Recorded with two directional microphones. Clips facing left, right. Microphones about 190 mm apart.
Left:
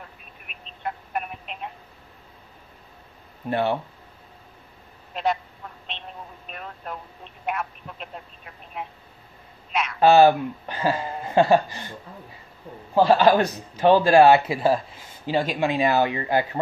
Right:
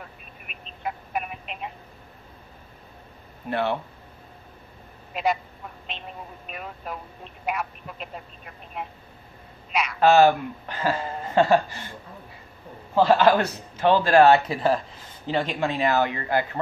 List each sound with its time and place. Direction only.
0.5 s telephone: centre (ahead or behind)
3.4 s speech: 15° left (ahead or behind)
5.1 s a man's voice: 5° right (ahead or behind)
5.9 s telephone: 5° right (ahead or behind)
7.4 s speech: centre (ahead or behind)
9.7 s a sound: centre (ahead or behind)
9.9 s speech: 15° left (ahead or behind)
12.9 s speech: 15° left (ahead or behind)